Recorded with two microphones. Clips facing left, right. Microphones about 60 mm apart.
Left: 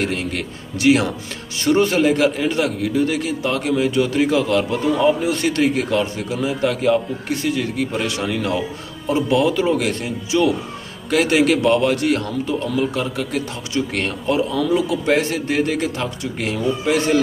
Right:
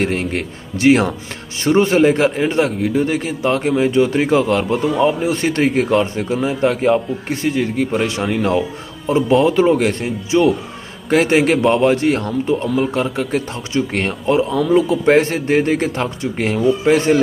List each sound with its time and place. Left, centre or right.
0.0 s a man's voice: right
8.3 s speech: centre
10.3 s a man's voice: right